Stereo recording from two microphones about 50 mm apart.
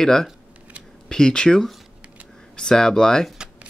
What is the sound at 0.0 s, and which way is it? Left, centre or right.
Speech, centre.